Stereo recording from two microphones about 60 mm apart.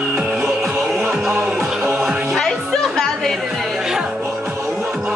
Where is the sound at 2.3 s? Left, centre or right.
Centre.